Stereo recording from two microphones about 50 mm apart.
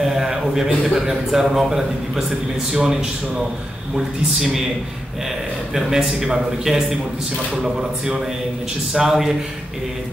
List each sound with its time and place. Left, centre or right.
0.0 s a man's voice: centre
5.8 s a man's voice: centre